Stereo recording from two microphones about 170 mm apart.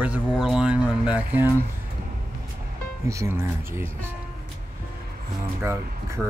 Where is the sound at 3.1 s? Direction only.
15° right (ahead or behind).